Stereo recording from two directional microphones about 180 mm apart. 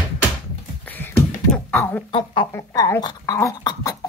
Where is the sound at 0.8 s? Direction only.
10° left (ahead or behind).